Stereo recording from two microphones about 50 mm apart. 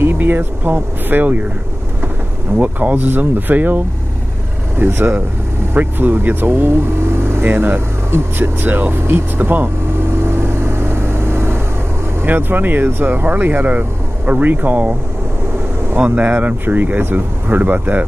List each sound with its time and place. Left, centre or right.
0.0 s speech: right
2.5 s speech: right
4.7 s speech: right
10.2 s vehicle: right
12.3 s speech: right
16.0 s speech: right